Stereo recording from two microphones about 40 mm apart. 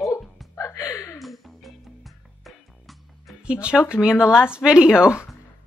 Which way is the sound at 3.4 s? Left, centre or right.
Right.